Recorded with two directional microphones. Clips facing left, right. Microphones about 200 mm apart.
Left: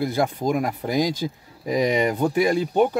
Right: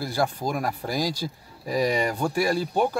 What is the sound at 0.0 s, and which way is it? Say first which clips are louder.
Speech: left 4 dB; 20° left (ahead or behind).